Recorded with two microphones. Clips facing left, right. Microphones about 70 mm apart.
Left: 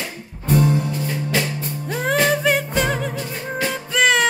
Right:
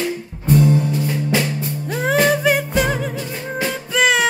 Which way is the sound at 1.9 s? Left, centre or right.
Centre.